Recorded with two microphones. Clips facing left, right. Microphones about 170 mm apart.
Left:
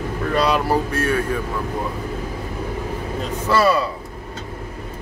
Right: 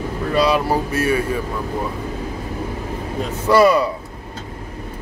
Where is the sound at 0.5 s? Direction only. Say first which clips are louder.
Right 1 dB; 5° right (ahead or behind).